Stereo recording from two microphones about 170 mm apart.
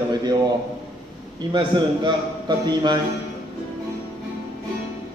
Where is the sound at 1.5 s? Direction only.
25° right (ahead or behind).